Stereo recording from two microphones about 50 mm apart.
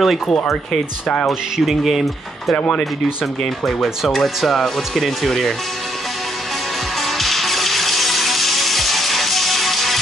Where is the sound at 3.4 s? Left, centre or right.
Centre.